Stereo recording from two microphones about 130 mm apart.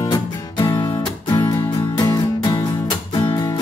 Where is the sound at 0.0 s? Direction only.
30° left (ahead or behind).